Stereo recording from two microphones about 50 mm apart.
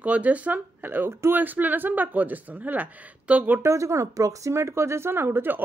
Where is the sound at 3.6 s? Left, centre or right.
Right.